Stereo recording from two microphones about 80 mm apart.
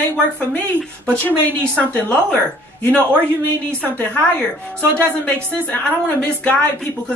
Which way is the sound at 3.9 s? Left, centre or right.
Left.